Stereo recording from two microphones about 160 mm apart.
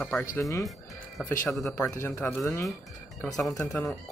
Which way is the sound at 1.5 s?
5° left (ahead or behind).